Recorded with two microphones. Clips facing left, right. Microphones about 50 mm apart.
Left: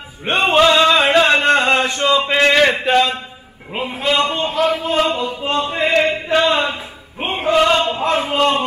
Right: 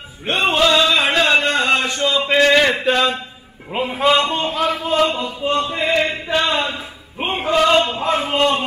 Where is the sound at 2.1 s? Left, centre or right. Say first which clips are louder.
Even; centre.